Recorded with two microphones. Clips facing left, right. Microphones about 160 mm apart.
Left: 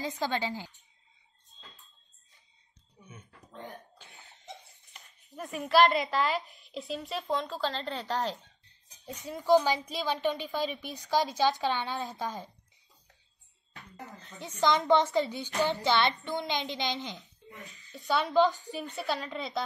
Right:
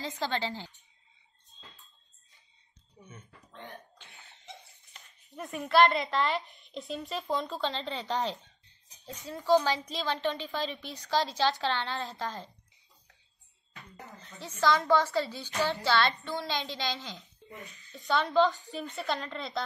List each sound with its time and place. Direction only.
0.2 s a woman's voice: 20° left (ahead or behind)
1.5 s a sound: centre (ahead or behind)
3.6 s speech: centre (ahead or behind)
9.0 s a woman's voice: 15° left (ahead or behind)
14.6 s a woman's voice: 20° left (ahead or behind)
17.2 s speech: centre (ahead or behind)
18.1 s a woman's voice: 15° left (ahead or behind)
19.0 s speech: 5° left (ahead or behind)